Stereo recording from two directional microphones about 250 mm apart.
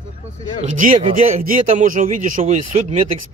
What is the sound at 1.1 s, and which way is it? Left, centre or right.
A man's voice, right.